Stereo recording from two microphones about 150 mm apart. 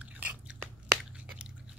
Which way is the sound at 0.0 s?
10° right (ahead or behind).